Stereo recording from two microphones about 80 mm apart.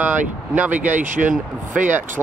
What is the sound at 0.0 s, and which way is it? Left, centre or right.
Speech, right.